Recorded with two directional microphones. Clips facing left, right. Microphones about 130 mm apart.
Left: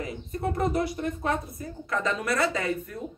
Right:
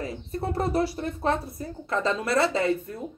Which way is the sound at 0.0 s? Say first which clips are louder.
Even; 30° right (ahead or behind).